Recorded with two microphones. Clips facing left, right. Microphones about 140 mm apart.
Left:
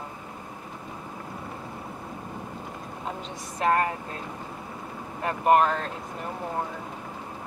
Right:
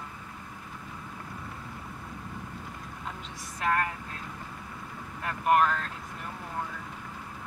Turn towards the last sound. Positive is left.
turn(degrees=30)  # may be behind; listen again after turning